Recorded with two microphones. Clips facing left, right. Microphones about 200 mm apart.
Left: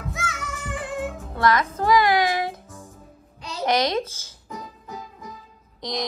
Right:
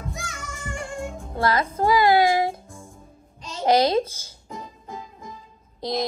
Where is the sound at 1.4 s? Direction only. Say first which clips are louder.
Even; 30° right (ahead or behind).